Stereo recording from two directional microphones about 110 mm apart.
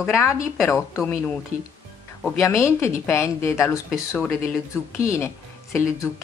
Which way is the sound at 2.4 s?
25° left (ahead or behind).